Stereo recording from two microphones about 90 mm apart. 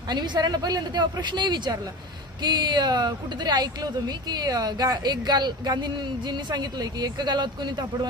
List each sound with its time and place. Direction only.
0.1 s speech: 55° right (ahead or behind)